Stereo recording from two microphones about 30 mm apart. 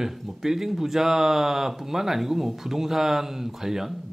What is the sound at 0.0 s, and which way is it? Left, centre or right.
Speech, centre.